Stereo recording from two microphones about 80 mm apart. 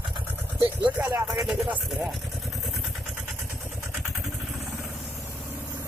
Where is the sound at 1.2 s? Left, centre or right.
Centre.